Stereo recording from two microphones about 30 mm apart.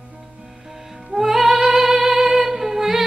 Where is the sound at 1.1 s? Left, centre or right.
Centre.